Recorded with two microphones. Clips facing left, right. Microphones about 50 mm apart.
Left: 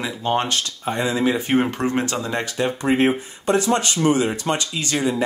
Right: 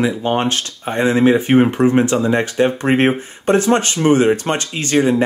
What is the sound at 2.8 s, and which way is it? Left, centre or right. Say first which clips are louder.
Speech: right 3 dB; right.